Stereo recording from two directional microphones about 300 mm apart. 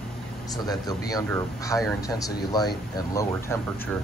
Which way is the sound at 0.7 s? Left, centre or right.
Centre.